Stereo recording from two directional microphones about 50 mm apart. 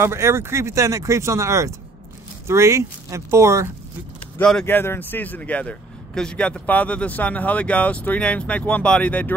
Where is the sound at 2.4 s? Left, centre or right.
Right.